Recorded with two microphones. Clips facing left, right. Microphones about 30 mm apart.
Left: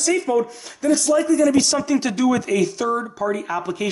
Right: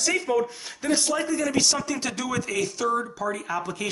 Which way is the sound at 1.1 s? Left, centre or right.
Centre.